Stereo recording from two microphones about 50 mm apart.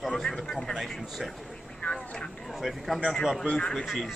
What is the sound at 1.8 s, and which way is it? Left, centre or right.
Vehicle, centre.